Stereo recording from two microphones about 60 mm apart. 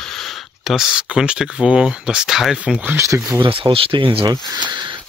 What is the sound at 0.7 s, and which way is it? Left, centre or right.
Speech, centre.